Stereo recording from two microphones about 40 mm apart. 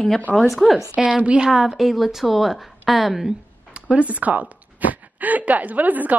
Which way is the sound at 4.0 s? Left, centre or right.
Right.